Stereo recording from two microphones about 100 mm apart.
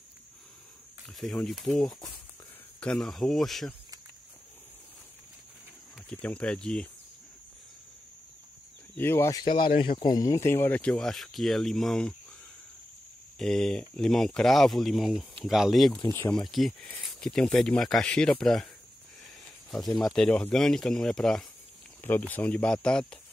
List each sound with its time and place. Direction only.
1.2 s speech: 5° left (ahead or behind)
6.0 s speech: 10° left (ahead or behind)
8.9 s speech: 25° left (ahead or behind)
9.3 s speech: 45° left (ahead or behind)
10.1 s speech: 35° left (ahead or behind); by 12.2 s 5° left (ahead or behind)
13.4 s speech: 5° left (ahead or behind)
19.7 s speech: centre (ahead or behind)
22.0 s speech: 20° left (ahead or behind)